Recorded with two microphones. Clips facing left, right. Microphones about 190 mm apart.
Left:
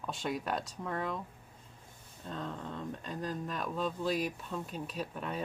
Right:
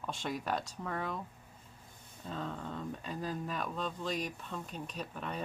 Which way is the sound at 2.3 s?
Centre (ahead or behind).